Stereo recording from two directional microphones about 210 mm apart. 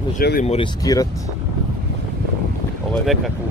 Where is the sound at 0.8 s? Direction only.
15° left (ahead or behind).